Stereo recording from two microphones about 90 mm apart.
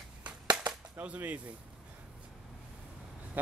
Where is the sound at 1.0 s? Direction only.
15° right (ahead or behind).